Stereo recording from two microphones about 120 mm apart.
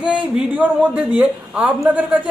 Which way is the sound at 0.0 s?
10° right (ahead or behind).